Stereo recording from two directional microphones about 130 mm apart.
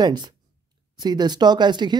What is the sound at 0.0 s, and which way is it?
Speech, 35° right (ahead or behind).